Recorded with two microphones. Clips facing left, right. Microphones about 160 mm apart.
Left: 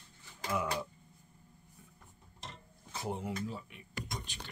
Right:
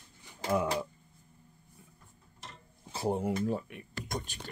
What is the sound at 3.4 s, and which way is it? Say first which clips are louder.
Speech: right 9 dB; 55° right (ahead or behind).